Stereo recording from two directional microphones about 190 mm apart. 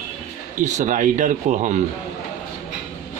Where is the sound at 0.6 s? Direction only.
40° right (ahead or behind).